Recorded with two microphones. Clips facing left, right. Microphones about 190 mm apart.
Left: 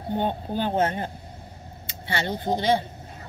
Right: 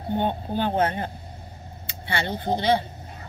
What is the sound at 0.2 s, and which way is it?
Speech, 40° left (ahead or behind).